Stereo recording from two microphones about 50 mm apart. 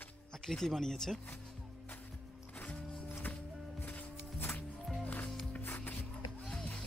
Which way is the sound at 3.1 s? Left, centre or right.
Left.